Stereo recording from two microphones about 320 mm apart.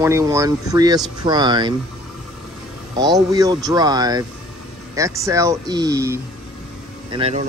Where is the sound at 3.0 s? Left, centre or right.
Centre.